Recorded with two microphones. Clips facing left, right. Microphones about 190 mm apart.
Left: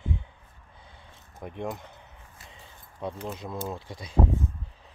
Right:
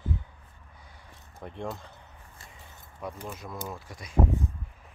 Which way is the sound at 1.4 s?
15° left (ahead or behind).